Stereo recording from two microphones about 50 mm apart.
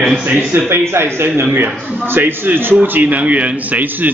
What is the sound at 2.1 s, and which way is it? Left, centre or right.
A man's voice, right.